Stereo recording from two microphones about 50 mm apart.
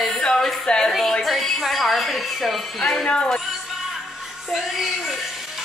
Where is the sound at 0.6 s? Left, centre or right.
Centre.